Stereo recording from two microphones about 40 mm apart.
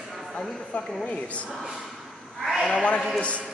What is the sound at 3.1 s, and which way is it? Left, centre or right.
Speech, left.